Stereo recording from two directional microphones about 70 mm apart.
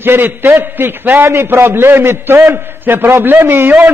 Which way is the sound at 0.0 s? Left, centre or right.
Right.